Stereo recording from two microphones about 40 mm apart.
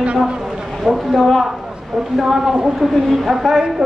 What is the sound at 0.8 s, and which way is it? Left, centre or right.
A man's voice, centre.